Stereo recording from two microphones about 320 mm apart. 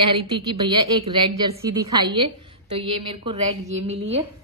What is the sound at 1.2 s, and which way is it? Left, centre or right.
A woman's voice, centre.